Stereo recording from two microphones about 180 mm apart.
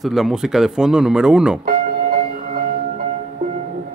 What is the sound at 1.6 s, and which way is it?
Music, 50° right (ahead or behind).